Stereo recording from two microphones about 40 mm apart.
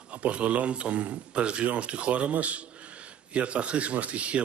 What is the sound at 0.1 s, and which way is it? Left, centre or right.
Speech, right.